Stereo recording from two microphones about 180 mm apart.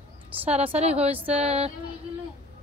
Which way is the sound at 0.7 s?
35° right (ahead or behind).